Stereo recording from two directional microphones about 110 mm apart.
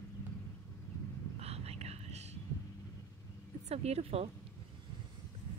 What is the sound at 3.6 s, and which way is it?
Speech, 75° right (ahead or behind).